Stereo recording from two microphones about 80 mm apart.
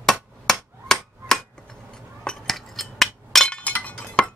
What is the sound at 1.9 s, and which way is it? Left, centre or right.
Chink, centre.